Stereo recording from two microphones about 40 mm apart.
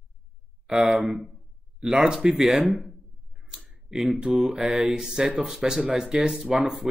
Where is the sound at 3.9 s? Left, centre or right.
Centre.